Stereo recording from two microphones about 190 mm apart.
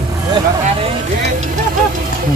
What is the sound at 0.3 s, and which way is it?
Vehicle, 30° right (ahead or behind).